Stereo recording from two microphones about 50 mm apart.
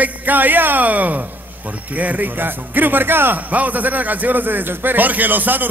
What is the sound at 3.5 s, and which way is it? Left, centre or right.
A man's voice, right.